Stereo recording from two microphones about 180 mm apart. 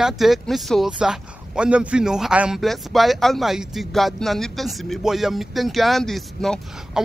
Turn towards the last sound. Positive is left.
turn(degrees=0)  # may be behind; listen again after turning